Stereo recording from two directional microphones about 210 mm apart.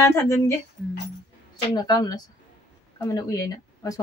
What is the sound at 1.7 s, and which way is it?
A woman's voice, 20° left (ahead or behind).